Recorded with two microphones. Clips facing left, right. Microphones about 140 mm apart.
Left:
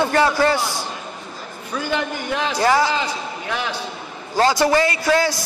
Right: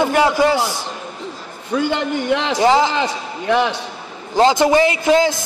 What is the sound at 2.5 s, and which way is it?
Speech, 20° right (ahead or behind).